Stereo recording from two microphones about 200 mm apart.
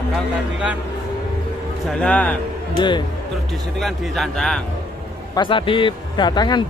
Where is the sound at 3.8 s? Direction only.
Centre (ahead or behind).